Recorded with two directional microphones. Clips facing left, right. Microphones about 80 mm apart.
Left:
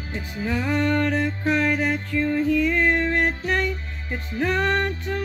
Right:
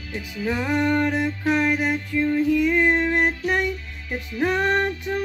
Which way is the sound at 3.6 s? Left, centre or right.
Left.